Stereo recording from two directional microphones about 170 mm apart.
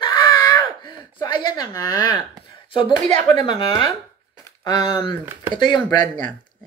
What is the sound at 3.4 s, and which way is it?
A woman's voice, 25° left (ahead or behind).